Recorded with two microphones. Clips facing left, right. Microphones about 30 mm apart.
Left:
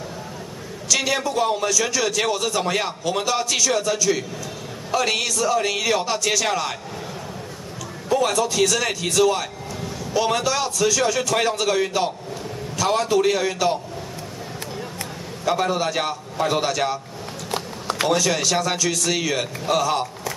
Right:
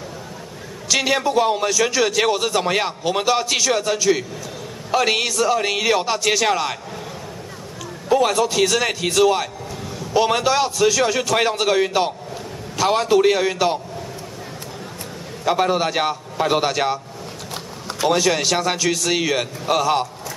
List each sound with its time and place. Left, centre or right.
0.9 s a man's voice: centre
8.1 s a man's voice: centre
15.4 s a man's voice: centre
17.5 s a sound: left
18.0 s a man's voice: centre